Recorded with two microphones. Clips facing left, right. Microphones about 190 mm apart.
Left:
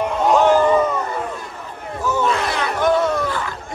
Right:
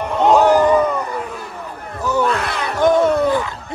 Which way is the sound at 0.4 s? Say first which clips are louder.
Even; 15° right (ahead or behind).